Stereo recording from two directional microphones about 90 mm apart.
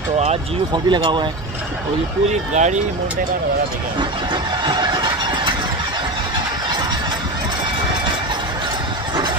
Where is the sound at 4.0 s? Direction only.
55° right (ahead or behind).